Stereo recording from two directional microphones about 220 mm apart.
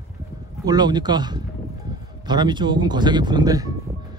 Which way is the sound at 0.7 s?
20° right (ahead or behind).